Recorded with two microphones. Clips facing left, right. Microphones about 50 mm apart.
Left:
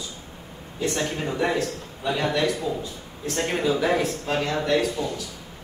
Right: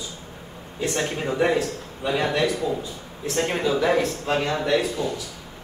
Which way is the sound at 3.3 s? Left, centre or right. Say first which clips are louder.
Right 1 dB; centre.